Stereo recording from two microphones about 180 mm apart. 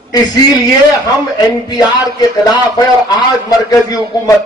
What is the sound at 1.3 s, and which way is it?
A man's voice, 20° left (ahead or behind).